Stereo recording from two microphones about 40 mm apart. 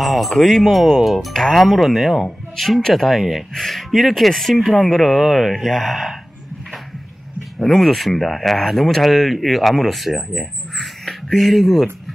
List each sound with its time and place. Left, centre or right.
0.0 s speech: centre
7.5 s speech: centre
7.8 s speech: centre
11.1 s speech: centre